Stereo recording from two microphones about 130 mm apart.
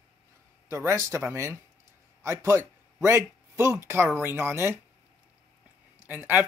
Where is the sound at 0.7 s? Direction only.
20° right (ahead or behind).